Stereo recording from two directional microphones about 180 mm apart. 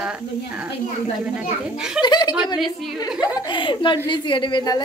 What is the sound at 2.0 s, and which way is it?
A woman's voice, 25° left (ahead or behind).